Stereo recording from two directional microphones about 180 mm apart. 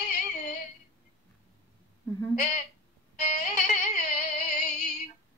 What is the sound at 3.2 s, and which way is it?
Music, 40° left (ahead or behind).